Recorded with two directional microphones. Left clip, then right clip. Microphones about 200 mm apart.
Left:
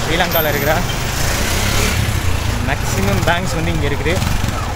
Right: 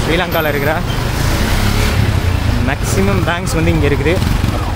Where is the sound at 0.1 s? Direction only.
15° right (ahead or behind).